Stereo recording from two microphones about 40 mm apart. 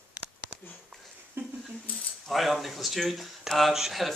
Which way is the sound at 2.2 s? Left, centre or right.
Centre.